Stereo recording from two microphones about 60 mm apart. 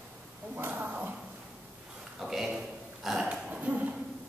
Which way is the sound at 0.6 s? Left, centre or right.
Right.